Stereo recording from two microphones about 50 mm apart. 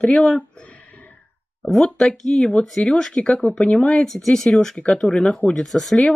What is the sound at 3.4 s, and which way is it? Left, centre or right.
Speech, left.